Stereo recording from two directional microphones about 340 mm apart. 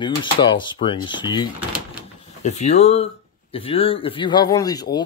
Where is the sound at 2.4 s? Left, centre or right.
Centre.